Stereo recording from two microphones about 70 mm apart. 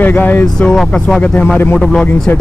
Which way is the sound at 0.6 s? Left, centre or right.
Centre.